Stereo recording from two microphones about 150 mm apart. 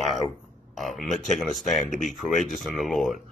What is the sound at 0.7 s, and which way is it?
Speech, centre (ahead or behind).